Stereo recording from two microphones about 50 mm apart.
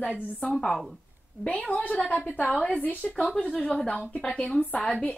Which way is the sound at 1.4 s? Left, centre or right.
Left.